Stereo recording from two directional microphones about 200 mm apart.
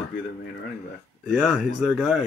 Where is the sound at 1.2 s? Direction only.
5° right (ahead or behind).